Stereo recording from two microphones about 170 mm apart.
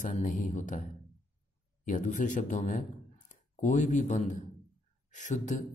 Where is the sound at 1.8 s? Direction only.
50° left (ahead or behind).